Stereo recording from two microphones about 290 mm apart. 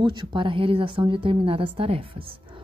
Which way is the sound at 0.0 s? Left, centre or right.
Centre.